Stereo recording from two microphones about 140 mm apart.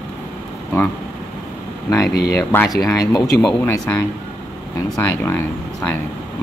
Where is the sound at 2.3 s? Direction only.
15° left (ahead or behind).